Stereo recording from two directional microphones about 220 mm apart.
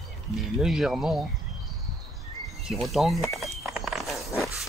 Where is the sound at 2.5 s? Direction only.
Centre (ahead or behind).